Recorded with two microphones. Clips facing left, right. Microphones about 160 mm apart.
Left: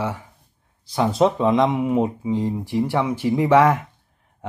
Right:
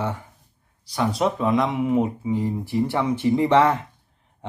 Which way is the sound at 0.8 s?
25° left (ahead or behind).